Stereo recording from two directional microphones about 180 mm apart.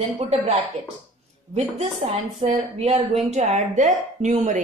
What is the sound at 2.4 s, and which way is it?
A woman's voice, 35° right (ahead or behind).